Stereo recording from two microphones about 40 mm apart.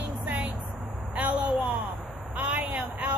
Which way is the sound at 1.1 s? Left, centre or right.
Right.